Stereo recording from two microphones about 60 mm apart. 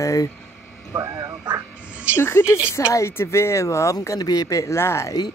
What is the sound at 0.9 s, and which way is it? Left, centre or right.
Speech, right.